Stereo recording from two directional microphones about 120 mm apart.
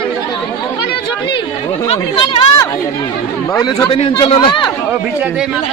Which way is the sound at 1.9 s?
45° left (ahead or behind).